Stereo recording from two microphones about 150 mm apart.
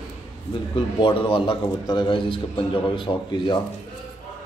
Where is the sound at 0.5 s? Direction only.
30° left (ahead or behind).